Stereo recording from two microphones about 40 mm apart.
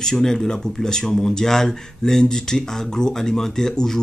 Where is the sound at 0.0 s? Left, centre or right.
Centre.